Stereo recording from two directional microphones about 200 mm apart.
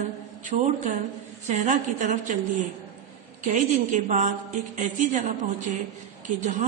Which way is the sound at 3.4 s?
40° right (ahead or behind).